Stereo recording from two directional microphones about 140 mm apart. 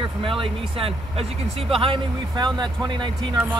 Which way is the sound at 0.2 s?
40° right (ahead or behind).